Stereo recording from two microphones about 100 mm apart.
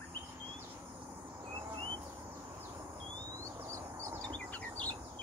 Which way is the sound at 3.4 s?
30° right (ahead or behind).